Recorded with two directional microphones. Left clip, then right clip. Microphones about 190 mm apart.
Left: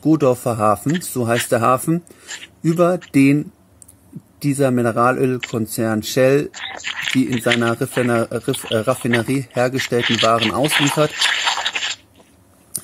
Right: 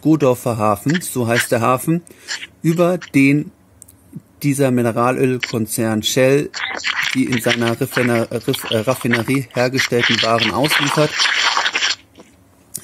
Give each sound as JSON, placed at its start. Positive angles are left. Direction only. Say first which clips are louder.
{"t": 0.0, "sound": "speech", "louder": "right 1 dB", "side_deg": -5}
{"t": 6.5, "sound": "speech", "louder": "right 6 dB", "side_deg": -45}
{"t": 7.6, "sound": "speech", "louder": "right 1 dB", "side_deg": -5}
{"t": 8.5, "sound": "speech", "louder": "right 2 dB", "side_deg": -45}
{"t": 9.3, "sound": "speech", "louder": "right 1 dB", "side_deg": -5}
{"t": 9.8, "sound": "speech", "louder": "right 2 dB", "side_deg": -40}
{"t": 10.6, "sound": "a sound", "louder": "right 1 dB", "side_deg": -40}